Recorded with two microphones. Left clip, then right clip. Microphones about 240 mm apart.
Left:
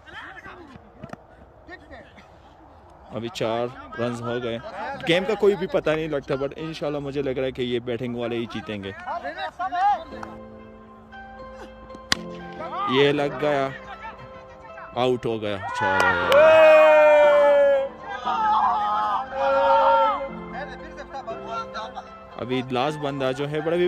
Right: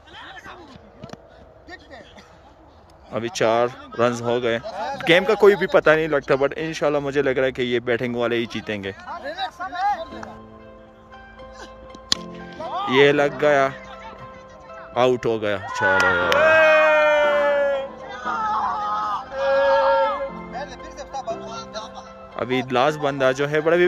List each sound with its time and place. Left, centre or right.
3.1 s speech: centre
4.6 s a sound: right
5.0 s speech: centre
9.2 s a sound: right
9.6 s music: left
12.1 s music: centre
12.6 s music: right
12.9 s speech: centre
16.3 s music: left
18.1 s a sound: left
19.6 s a sound: centre
20.5 s music: right
22.3 s speech: centre